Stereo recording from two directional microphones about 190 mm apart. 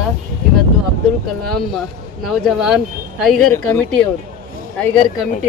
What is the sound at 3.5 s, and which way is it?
Speech, 10° left (ahead or behind).